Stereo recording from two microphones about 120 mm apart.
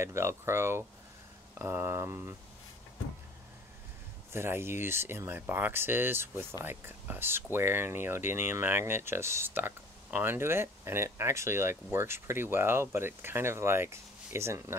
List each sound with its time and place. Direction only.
0.0 s speech: 20° right (ahead or behind)
4.3 s speech: 20° right (ahead or behind)